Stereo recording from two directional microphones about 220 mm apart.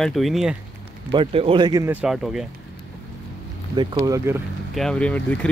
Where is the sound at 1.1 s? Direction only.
25° right (ahead or behind); by 2.4 s centre (ahead or behind).